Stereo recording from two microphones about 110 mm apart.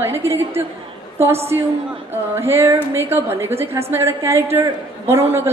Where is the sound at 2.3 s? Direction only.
20° right (ahead or behind).